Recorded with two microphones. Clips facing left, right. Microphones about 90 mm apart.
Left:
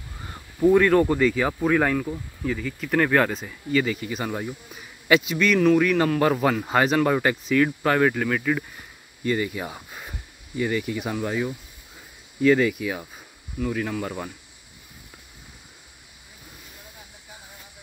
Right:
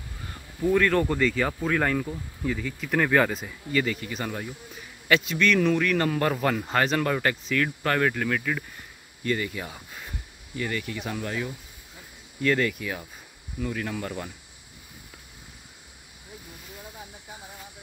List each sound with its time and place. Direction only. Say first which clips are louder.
0.6 s speech: left 5 dB; 20° left (ahead or behind)